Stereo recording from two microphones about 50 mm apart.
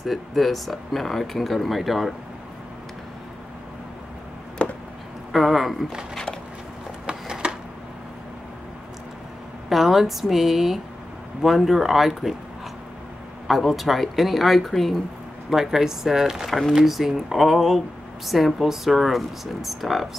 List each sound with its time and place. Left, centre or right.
0.0 s speech: centre
4.6 s a sound: left
5.3 s speech: centre
7.1 s a sound: centre
9.7 s a woman's voice: centre
13.5 s speech: centre
15.5 s speech: centre
16.4 s speech: centre